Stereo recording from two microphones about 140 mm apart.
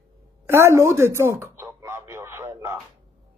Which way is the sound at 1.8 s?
20° right (ahead or behind).